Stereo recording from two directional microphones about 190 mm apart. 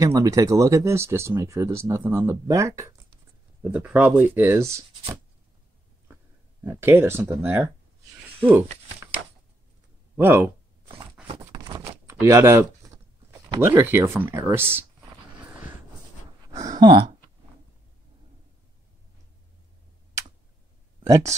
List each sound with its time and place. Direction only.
0.0 s speech: 15° right (ahead or behind)
6.6 s speech: 10° right (ahead or behind)
10.1 s speech: 10° right (ahead or behind)
11.2 s a sound: 25° right (ahead or behind)
12.1 s speech: 15° right (ahead or behind)
16.5 s speech: 20° right (ahead or behind)
21.0 s speech: 15° right (ahead or behind)